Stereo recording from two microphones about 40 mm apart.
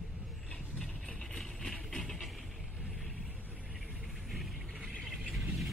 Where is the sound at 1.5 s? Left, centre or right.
Centre.